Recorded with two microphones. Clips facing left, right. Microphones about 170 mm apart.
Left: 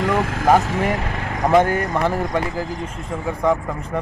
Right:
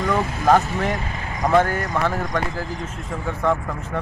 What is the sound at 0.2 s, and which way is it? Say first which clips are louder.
Speech: left 2 dB; 90° left.